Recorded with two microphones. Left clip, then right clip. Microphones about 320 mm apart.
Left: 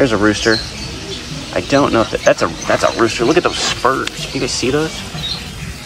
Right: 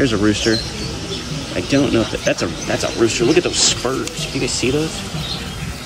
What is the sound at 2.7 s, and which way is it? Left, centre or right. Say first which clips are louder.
Speech: left 4 dB; left.